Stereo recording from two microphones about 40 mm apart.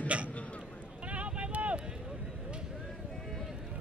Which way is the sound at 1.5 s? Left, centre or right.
Right.